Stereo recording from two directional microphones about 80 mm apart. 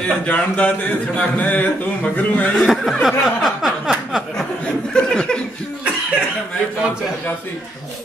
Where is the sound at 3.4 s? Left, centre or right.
Centre.